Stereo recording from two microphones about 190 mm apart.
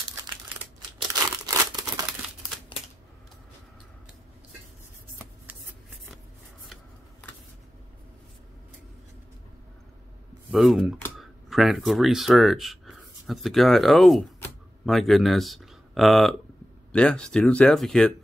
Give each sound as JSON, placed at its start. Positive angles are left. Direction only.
{"t": 0.9, "sound": "crumpling", "side_deg": -20}
{"t": 10.5, "sound": "speech", "side_deg": 0}